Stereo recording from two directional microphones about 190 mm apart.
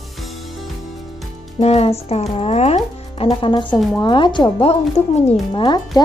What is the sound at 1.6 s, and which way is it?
Speech, 30° left (ahead or behind).